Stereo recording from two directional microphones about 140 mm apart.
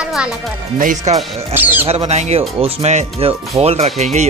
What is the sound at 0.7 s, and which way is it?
Speech, 60° right (ahead or behind).